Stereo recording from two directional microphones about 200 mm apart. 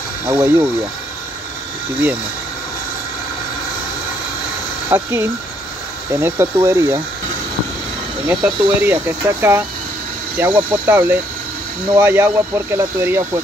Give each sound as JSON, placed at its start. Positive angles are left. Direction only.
{"t": 0.3, "sound": "speech", "side_deg": -15}
{"t": 4.8, "sound": "speech", "side_deg": -10}
{"t": 8.3, "sound": "speech", "side_deg": -10}